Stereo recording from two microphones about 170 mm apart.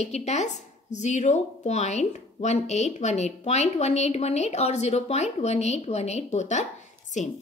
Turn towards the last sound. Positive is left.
turn(degrees=45)  # may be behind; listen again after turning